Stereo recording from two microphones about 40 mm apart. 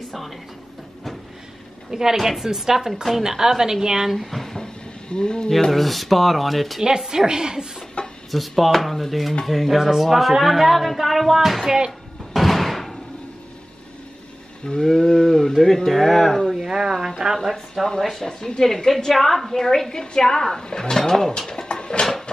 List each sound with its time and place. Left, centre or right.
1.9 s a woman's voice: centre
4.1 s speech: centre
5.1 s speech: left
5.5 s speech: centre
7.1 s a woman's voice: centre
8.0 s a sound: left
8.3 s speech: centre
12.4 s music: centre
14.7 s a woman's voice: centre
16.4 s speech: centre
17.4 s a woman's voice: centre
21.3 s mechanisms: centre